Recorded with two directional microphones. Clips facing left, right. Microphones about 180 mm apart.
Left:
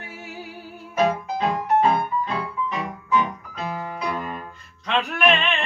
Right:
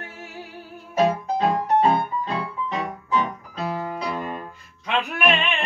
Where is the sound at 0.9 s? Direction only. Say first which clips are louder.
Right 1 dB; 35° right (ahead or behind).